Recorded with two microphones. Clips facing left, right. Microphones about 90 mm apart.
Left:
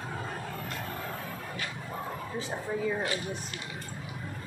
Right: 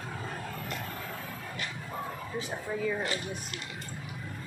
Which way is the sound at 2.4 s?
25° left (ahead or behind).